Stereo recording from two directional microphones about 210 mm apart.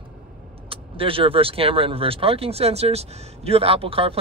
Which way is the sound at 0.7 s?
25° right (ahead or behind).